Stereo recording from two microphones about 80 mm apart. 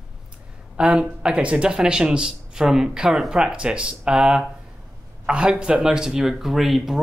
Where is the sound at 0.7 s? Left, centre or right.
Centre.